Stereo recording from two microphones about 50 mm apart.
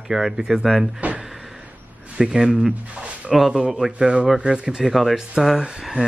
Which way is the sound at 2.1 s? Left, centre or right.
Centre.